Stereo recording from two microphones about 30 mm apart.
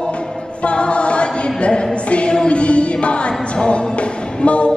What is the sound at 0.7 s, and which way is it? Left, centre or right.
A capella, left.